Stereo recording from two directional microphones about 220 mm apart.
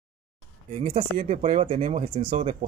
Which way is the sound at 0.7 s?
25° right (ahead or behind).